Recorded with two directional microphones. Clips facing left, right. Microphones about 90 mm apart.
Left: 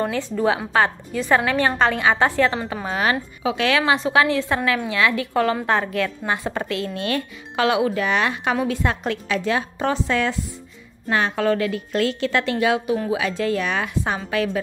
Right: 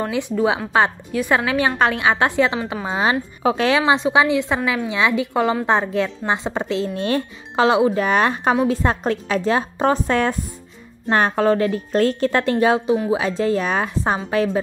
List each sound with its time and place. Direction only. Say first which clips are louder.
0.1 s a woman's voice: right 2 dB; 15° right (ahead or behind)
3.4 s a woman's voice: right 3 dB; 35° right (ahead or behind)
3.8 s a woman's voice: right 2 dB; 20° right (ahead or behind)